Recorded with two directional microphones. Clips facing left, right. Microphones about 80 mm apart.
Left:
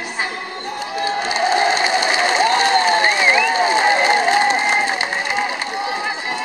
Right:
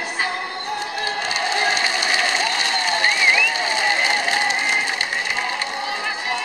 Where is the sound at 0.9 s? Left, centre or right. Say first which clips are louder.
Left 4 dB; left.